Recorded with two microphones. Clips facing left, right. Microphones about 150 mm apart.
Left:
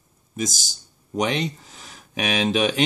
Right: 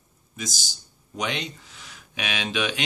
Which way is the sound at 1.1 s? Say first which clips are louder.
Left 6 dB; 40° left (ahead or behind).